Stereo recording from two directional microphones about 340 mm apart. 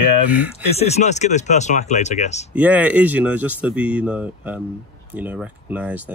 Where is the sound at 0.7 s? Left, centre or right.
Centre.